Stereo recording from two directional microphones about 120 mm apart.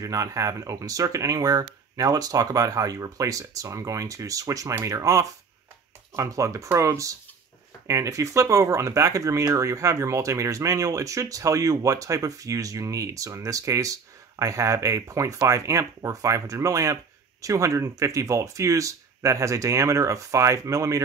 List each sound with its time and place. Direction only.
0.0 s speech: 30° right (ahead or behind)